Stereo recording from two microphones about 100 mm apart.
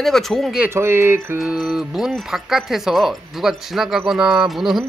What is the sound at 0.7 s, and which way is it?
Speech, 25° right (ahead or behind).